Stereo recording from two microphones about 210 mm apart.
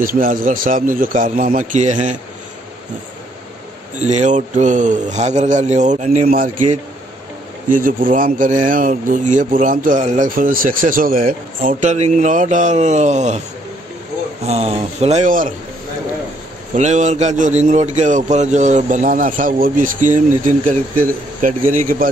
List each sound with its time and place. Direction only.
0.0 s speech: 40° right (ahead or behind)
4.1 s speech: 35° right (ahead or behind)
14.4 s speech: 30° right (ahead or behind)
16.7 s speech: 35° right (ahead or behind)